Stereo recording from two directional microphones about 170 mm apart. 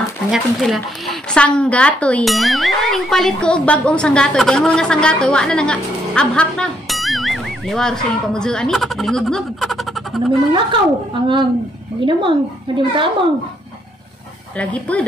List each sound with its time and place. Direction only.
0.3 s speech: centre (ahead or behind)
10.5 s a woman's voice: 30° right (ahead or behind)
14.6 s speech: 10° left (ahead or behind)